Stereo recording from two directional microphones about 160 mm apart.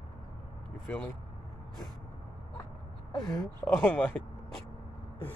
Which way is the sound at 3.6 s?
10° left (ahead or behind).